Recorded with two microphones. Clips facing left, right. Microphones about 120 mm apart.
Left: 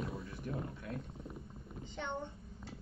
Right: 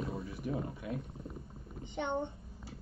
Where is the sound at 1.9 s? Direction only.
25° right (ahead or behind).